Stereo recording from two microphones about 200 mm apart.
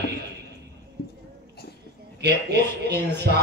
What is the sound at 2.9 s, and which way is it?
Speech, 55° right (ahead or behind).